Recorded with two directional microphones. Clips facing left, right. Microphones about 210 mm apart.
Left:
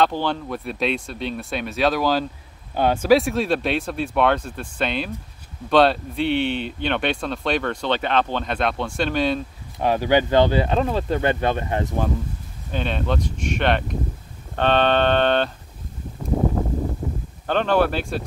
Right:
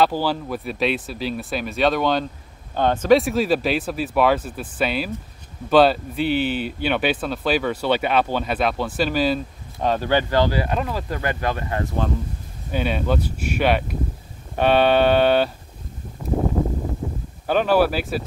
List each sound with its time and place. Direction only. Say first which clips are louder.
0.0 s speech: right 1 dB; 5° right (ahead or behind)
9.8 s speech: left 2 dB; 10° left (ahead or behind)
12.7 s speech: right 2 dB; 5° right (ahead or behind)
17.5 s speech: right 2 dB; 5° right (ahead or behind)